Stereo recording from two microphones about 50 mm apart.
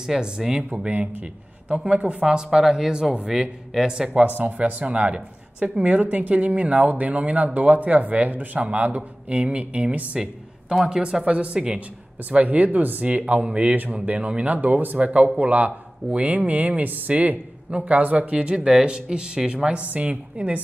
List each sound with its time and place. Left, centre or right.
0.0 s speech: centre
1.9 s speech: centre
4.4 s a woman's voice: right
10.2 s speech: centre
12.3 s speech: right
13.0 s a woman's voice: right
13.9 s a woman's voice: right
18.4 s a woman's voice: centre